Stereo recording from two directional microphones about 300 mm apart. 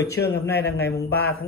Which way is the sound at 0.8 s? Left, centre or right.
Left.